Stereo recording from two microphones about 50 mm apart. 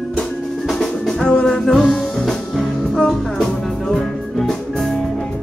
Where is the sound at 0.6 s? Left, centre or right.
Centre.